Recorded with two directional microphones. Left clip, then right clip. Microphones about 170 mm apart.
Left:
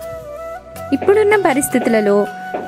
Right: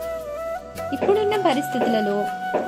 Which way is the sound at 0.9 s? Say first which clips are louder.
Left 8 dB; 25° left (ahead or behind).